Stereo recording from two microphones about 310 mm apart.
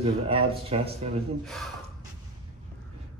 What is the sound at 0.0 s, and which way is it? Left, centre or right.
Speech, centre.